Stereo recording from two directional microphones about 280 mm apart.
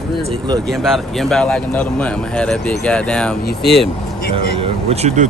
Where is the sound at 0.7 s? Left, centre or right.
Centre.